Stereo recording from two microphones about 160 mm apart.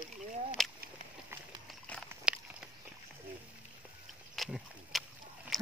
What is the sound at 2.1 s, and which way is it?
Biting, 5° right (ahead or behind).